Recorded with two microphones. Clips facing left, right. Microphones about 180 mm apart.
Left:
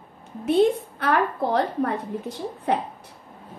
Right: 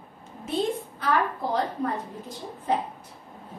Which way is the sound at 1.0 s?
65° left (ahead or behind).